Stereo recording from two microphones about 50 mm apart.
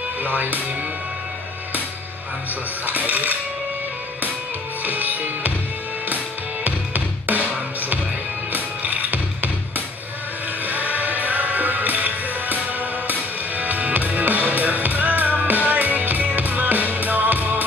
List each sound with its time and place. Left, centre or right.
0.2 s music: right
2.9 s music: right
4.8 s music: right
8.5 s music: right